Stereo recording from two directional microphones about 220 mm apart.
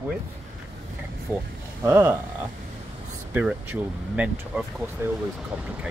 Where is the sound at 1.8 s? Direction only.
10° right (ahead or behind).